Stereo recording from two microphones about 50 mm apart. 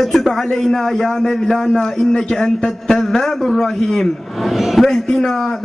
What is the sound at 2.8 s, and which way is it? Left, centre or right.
A man's voice, centre.